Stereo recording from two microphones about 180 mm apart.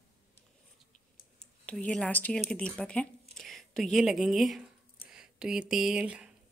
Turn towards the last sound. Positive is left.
turn(degrees=-5)  # may be behind; listen again after turning